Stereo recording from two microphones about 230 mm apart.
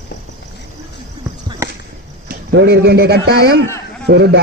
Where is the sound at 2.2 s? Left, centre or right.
Right.